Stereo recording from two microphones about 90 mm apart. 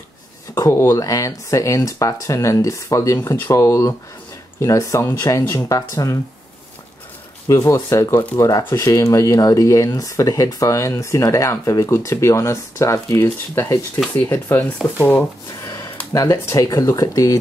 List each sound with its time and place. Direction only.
0.6 s speech: 35° left (ahead or behind)
3.2 s speech: 25° left (ahead or behind); by 6.1 s 40° left (ahead or behind)
7.4 s speech: 35° left (ahead or behind)
8.4 s speech: 40° left (ahead or behind)
14.6 s speech: 20° left (ahead or behind)
15.6 s a sound: 40° left (ahead or behind)
16.1 s speech: 35° left (ahead or behind)